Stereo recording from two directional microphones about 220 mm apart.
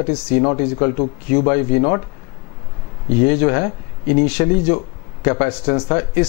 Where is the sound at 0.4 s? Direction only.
20° left (ahead or behind).